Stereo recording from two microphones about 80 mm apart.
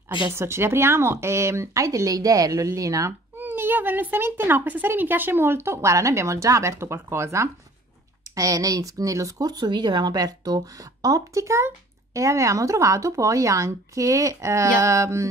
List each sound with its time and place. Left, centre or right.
0.3 s speech: right
3.1 s speech: right
8.2 s speech: right